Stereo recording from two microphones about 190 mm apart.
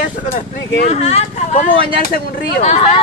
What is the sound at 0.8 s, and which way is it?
Speech, 35° left (ahead or behind).